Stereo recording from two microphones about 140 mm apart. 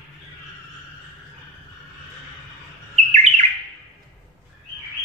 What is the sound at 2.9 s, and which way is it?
Chirp, 55° right (ahead or behind).